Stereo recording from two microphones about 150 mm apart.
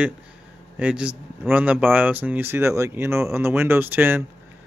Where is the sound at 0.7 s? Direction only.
10° right (ahead or behind).